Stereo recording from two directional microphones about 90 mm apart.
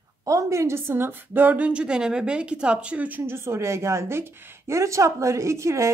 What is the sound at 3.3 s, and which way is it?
A woman's voice, 30° right (ahead or behind).